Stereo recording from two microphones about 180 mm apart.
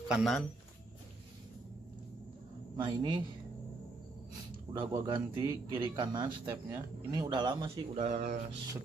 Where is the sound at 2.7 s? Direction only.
25° right (ahead or behind).